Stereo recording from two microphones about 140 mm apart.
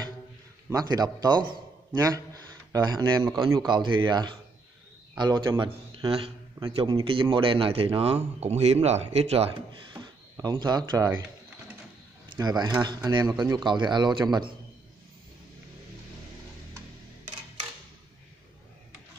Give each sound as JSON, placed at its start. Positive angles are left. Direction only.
{"t": 0.7, "sound": "a man's voice", "side_deg": -25}
{"t": 5.6, "sound": "a man's voice", "side_deg": -40}
{"t": 10.3, "sound": "speech", "side_deg": -25}
{"t": 12.3, "sound": "speech", "side_deg": -30}